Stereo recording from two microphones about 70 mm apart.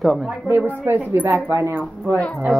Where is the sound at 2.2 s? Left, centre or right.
Centre.